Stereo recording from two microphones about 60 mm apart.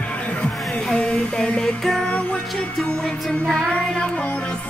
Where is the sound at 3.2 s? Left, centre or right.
Centre.